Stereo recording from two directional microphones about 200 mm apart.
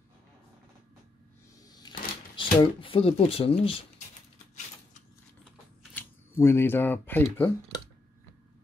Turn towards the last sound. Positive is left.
turn(degrees=10)  # may be behind; listen again after turning